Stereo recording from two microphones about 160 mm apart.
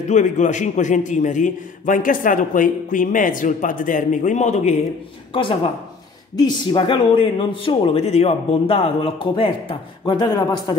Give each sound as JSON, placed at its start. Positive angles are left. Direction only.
{"t": 0.1, "sound": "a man's voice", "side_deg": 50}
{"t": 5.3, "sound": "speech", "side_deg": 35}